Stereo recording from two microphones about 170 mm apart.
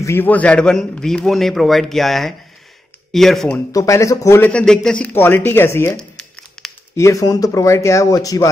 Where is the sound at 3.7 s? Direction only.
20° left (ahead or behind).